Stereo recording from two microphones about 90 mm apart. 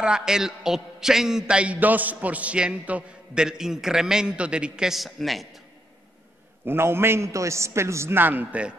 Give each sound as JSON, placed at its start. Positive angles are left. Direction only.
{"t": 0.0, "sound": "a man's voice", "side_deg": -10}
{"t": 6.6, "sound": "a man's voice", "side_deg": -25}